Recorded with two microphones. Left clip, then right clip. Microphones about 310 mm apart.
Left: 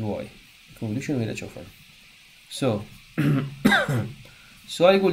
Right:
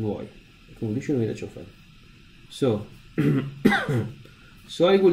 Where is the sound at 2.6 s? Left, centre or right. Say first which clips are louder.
Right 2 dB; centre.